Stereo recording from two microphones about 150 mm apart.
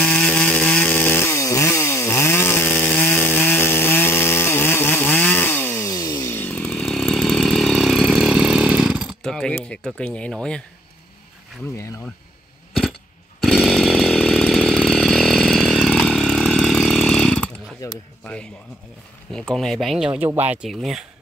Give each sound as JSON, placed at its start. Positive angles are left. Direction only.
{"t": 0.0, "sound": "chainsaw", "side_deg": 5}
{"t": 5.9, "sound": "chainsaw", "side_deg": 25}
{"t": 11.7, "sound": "speech", "side_deg": 15}
{"t": 13.4, "sound": "chainsaw", "side_deg": 0}
{"t": 18.2, "sound": "speech", "side_deg": 5}